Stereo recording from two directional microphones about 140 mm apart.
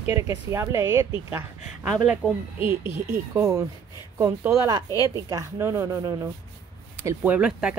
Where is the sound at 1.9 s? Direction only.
5° right (ahead or behind).